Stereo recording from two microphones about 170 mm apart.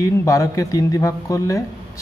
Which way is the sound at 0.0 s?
20° left (ahead or behind).